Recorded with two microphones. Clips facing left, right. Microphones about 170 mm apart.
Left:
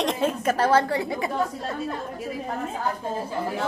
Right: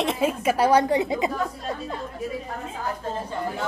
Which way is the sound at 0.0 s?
5° right (ahead or behind).